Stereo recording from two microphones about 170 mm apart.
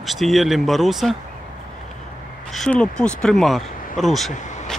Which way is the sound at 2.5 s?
5° left (ahead or behind).